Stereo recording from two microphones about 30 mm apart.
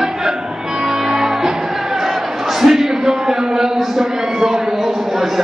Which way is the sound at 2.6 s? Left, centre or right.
Centre.